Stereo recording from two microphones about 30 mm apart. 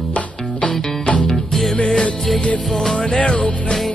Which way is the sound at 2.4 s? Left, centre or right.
Left.